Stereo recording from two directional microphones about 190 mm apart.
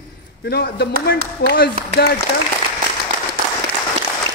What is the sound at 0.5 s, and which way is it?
Speech, 55° left (ahead or behind).